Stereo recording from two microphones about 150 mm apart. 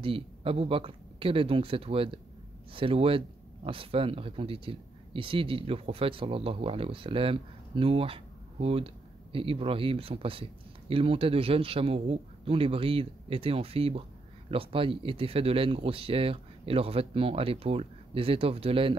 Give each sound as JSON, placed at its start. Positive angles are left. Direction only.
{"t": 0.0, "sound": "speech", "side_deg": -40}